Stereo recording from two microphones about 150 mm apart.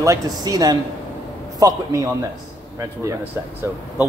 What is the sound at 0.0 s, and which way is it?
A man's voice, 20° right (ahead or behind).